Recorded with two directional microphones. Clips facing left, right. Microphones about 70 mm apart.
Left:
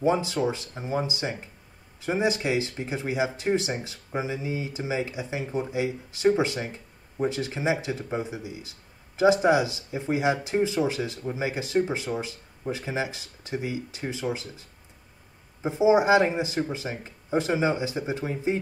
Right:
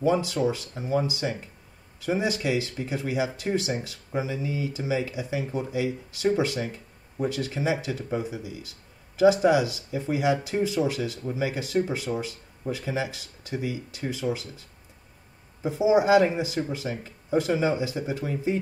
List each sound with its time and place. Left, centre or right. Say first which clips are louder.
0.0 s speech: even; left
15.6 s speech: left 1 dB; left